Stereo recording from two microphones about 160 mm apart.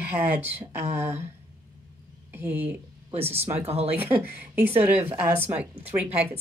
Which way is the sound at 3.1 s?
40° right (ahead or behind).